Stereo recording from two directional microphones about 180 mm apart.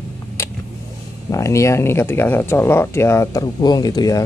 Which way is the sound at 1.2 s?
15° left (ahead or behind).